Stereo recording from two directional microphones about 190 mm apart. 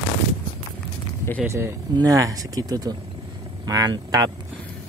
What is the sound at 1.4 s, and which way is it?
Speech, 15° right (ahead or behind).